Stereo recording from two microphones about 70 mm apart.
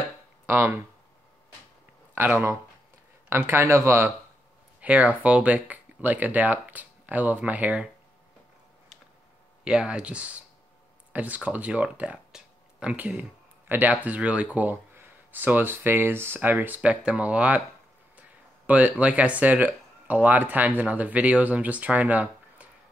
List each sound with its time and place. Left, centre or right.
0.5 s speech: right
2.1 s speech: right
4.7 s speech: right
9.7 s speech: centre
18.7 s speech: right